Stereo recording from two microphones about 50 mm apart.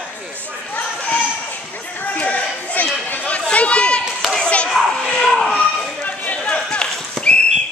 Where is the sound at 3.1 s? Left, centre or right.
Left.